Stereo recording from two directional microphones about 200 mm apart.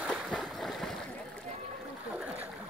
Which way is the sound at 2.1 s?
5° right (ahead or behind).